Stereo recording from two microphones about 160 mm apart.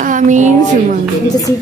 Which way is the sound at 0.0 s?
50° right (ahead or behind).